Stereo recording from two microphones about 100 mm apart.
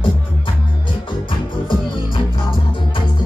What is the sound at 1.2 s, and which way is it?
Music, 55° left (ahead or behind).